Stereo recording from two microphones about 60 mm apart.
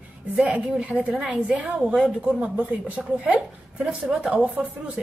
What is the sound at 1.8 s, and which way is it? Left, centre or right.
Speech, centre.